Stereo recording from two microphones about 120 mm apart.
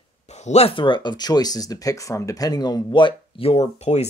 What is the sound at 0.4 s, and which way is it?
Speech, 65° left (ahead or behind).